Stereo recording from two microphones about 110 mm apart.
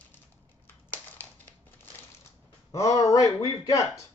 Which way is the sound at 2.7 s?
30° left (ahead or behind).